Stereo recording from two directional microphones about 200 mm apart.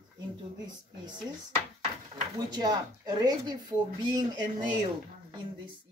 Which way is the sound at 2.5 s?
20° right (ahead or behind).